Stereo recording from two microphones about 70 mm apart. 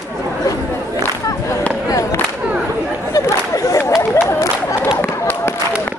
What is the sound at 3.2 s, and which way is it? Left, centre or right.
Chatter, left.